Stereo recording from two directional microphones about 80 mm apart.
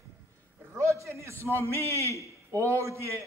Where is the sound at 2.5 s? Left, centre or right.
Right.